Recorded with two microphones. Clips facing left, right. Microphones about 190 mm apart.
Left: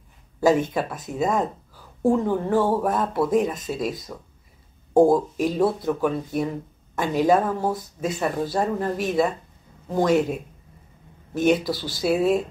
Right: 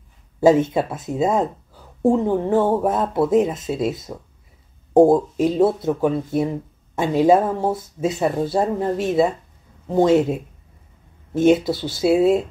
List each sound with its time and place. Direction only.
0.4 s speech: 25° right (ahead or behind)